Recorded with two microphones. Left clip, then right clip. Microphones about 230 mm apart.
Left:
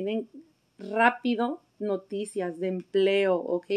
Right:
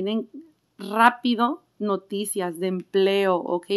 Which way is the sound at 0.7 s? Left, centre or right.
Right.